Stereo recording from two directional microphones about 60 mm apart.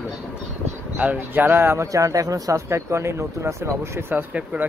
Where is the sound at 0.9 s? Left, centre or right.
Right.